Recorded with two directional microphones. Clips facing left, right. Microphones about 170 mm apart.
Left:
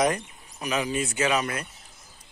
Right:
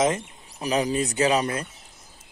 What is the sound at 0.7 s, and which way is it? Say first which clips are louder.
Speech: right 4 dB; 35° right (ahead or behind).